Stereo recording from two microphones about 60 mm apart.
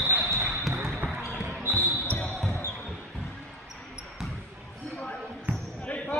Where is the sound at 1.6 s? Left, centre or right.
Right.